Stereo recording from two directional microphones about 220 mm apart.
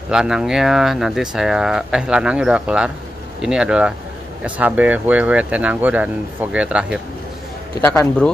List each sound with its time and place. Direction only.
0.1 s speech: 5° right (ahead or behind)
7.8 s speech: 10° left (ahead or behind)